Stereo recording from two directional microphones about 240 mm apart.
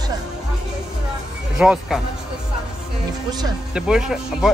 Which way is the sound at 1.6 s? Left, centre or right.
Centre.